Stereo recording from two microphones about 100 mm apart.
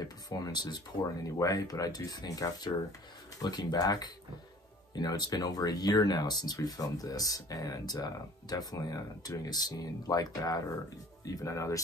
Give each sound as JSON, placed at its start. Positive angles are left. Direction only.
{"t": 0.0, "sound": "speech", "side_deg": 40}